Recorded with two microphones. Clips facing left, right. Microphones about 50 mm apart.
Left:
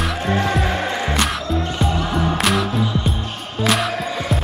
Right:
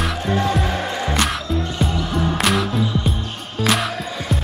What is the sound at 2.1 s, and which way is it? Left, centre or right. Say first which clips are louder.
Music: left 1 dB; centre.